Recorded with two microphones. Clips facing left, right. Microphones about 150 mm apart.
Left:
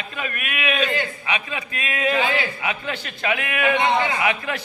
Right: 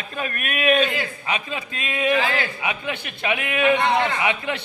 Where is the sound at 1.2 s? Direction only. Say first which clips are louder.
Even; 35° right (ahead or behind).